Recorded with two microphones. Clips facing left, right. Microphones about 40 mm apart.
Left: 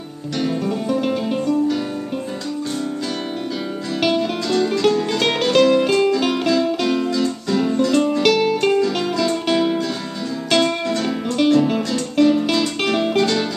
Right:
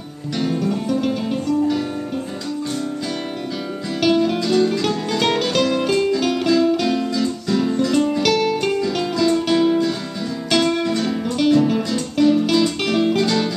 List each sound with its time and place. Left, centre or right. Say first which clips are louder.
0.4 s music: even; centre
4.0 s music: right 3 dB; centre